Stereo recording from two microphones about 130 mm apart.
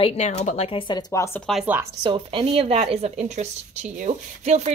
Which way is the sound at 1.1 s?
20° left (ahead or behind).